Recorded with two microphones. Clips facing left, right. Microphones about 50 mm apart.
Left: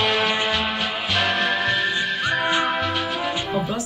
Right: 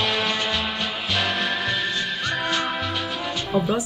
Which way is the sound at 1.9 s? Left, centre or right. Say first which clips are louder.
Left 3 dB; centre.